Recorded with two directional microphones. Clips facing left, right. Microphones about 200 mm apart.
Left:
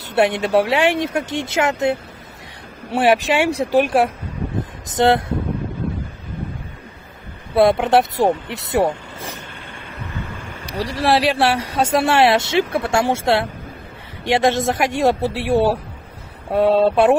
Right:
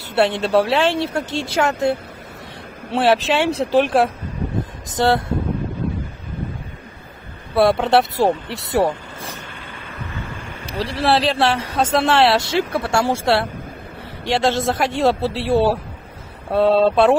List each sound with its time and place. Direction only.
0.1 s speech: 15° left (ahead or behind)
4.8 s speech: 20° left (ahead or behind)
7.5 s speech: 20° left (ahead or behind)
10.7 s speech: 10° left (ahead or behind)